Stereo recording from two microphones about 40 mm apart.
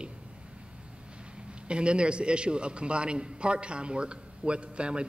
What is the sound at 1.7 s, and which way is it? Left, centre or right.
A man's voice, right.